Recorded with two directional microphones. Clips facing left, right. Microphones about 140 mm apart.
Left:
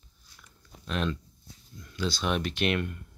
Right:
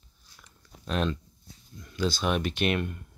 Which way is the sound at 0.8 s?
35° right (ahead or behind).